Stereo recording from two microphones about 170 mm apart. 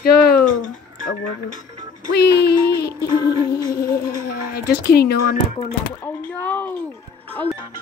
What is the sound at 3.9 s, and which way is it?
Speech, 65° left (ahead or behind).